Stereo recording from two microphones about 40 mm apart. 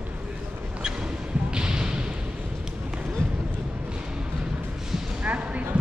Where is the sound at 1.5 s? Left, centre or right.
Right.